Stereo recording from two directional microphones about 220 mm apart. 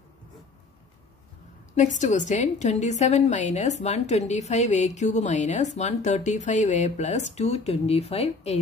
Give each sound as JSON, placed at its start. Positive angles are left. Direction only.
{"t": 1.8, "sound": "a woman's voice", "side_deg": 35}